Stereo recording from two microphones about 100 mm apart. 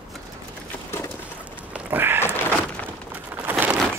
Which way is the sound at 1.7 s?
20° right (ahead or behind).